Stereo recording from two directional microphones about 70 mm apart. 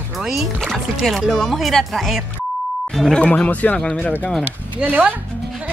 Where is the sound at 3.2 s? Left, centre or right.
Left.